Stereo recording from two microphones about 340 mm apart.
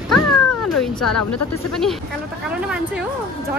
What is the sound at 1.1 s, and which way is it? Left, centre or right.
Speech, left.